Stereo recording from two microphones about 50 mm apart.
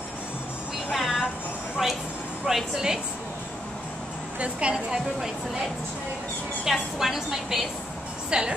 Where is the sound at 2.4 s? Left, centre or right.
Centre.